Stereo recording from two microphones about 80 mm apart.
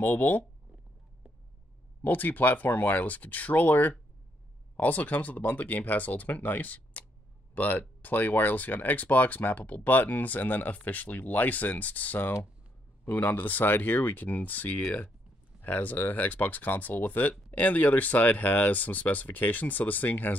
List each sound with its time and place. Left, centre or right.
0.0 s speech: left
2.0 s speech: left